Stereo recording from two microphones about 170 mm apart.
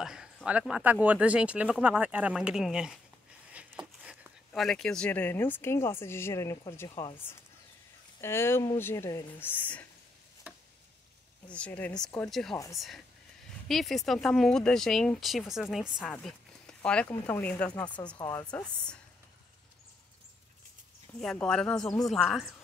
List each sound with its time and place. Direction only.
0.0 s speech: 5° right (ahead or behind)
3.5 s a sound: 5° right (ahead or behind)
4.5 s speech: 5° left (ahead or behind); by 7.1 s 20° left (ahead or behind)
8.2 s speech: 15° left (ahead or behind)
10.4 s a sound: 10° right (ahead or behind)
11.5 s speech: 10° left (ahead or behind)
18.1 s speech: 25° left (ahead or behind)
18.4 s speech: 5° left (ahead or behind)
21.2 s speech: 5° left (ahead or behind)